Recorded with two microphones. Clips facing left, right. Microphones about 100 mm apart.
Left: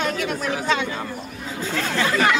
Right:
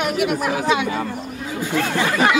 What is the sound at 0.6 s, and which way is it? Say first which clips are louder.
Speech: right 4 dB; 15° right (ahead or behind).